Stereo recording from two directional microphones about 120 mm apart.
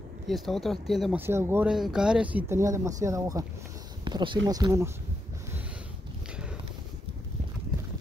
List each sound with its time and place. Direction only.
0.3 s speech: centre (ahead or behind)
1.1 s speech: 20° right (ahead or behind)
1.7 s speech: 5° right (ahead or behind)
2.5 s speech: 25° right (ahead or behind)
4.0 s speech: 40° right (ahead or behind); by 4.9 s 25° right (ahead or behind)